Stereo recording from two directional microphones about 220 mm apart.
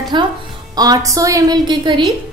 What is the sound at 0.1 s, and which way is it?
A woman's voice, 20° right (ahead or behind).